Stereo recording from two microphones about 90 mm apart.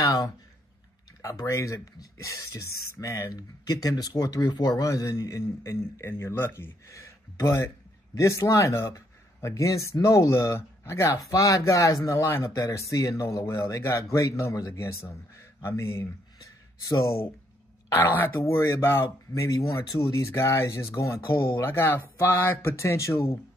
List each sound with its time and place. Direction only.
1.2 s speech: 35° left (ahead or behind)
17.9 s speech: 25° left (ahead or behind)